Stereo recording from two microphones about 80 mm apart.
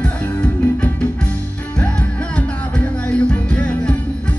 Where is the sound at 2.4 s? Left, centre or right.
Centre.